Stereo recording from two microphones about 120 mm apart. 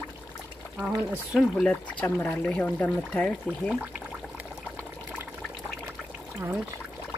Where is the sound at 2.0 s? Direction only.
20° left (ahead or behind).